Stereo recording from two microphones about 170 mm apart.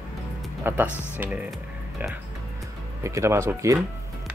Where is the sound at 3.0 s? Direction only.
15° right (ahead or behind).